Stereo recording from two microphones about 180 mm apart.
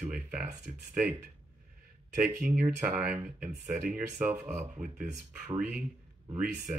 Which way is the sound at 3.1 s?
45° right (ahead or behind).